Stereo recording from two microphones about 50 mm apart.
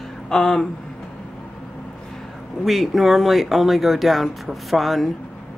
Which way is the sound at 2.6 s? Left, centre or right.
Centre.